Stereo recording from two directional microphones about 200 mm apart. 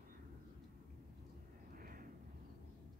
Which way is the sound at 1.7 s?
45° right (ahead or behind).